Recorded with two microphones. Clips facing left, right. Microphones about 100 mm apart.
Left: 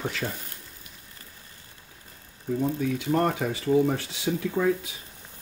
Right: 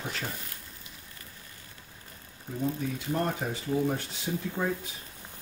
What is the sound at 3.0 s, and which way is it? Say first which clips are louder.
Speech: left 5 dB; 90° left.